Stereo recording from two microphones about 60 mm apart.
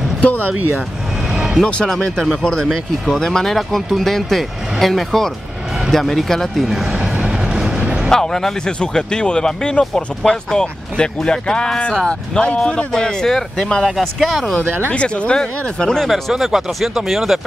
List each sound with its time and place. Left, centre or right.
1.3 s vehicle: centre
1.9 s speech: centre
5.9 s vehicle: centre
8.1 s speech: centre
14.9 s speech: centre
16.1 s speech: centre